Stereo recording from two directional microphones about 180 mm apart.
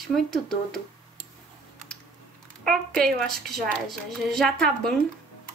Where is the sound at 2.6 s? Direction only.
5° left (ahead or behind).